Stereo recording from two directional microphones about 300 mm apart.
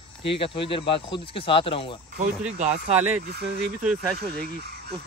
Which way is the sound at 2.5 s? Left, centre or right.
Right.